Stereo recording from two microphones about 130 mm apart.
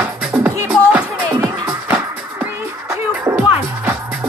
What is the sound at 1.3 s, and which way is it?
Music, 25° right (ahead or behind).